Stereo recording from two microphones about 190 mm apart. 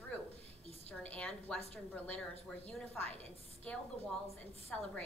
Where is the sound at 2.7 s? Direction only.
5° left (ahead or behind).